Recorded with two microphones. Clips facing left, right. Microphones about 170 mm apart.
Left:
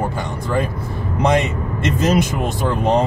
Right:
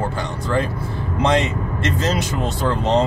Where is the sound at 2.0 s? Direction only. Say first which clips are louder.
Left 6 dB; 15° left (ahead or behind).